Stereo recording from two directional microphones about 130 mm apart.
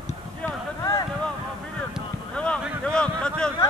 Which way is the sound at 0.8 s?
25° left (ahead or behind).